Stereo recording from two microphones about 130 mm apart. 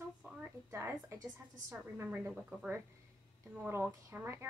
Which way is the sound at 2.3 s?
5° right (ahead or behind).